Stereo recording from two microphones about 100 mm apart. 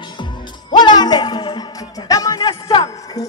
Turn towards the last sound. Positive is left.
turn(degrees=45)  # may be behind; listen again after turning